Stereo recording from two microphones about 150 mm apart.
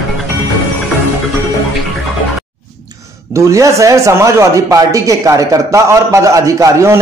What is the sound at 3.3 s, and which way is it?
Speech, 20° right (ahead or behind).